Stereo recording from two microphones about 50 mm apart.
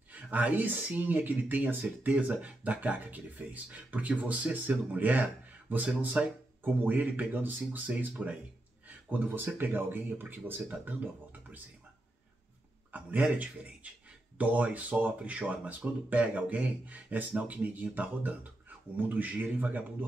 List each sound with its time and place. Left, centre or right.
0.1 s speech: right
9.2 s speech: right
10.9 s speech: right
12.9 s speech: right